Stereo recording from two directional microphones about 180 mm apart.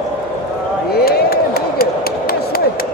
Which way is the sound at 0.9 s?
60° left (ahead or behind).